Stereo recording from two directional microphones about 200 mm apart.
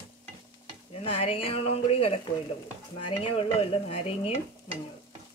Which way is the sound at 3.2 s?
30° left (ahead or behind).